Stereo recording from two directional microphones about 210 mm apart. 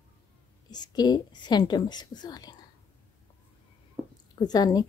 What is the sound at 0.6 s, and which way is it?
A woman's voice, 20° left (ahead or behind).